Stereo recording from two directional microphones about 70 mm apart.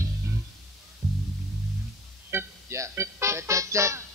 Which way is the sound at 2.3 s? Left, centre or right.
Right.